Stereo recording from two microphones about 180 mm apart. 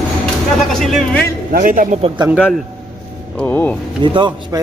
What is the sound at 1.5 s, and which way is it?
Speech, 50° right (ahead or behind).